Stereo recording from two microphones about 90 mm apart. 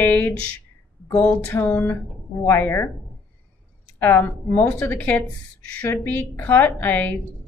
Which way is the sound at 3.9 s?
20° left (ahead or behind).